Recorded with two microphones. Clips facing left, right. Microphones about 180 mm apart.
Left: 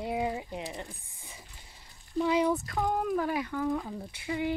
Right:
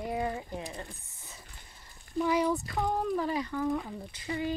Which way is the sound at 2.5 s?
Centre (ahead or behind).